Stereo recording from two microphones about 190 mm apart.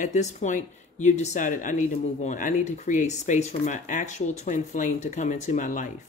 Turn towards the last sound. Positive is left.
turn(degrees=45)  # may be behind; listen again after turning